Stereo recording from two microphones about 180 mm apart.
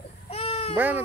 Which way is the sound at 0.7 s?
10° right (ahead or behind).